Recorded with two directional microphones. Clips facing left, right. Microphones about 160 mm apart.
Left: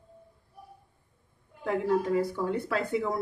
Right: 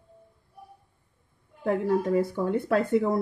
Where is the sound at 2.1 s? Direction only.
55° right (ahead or behind).